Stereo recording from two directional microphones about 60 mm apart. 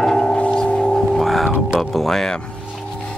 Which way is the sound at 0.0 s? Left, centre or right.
Centre.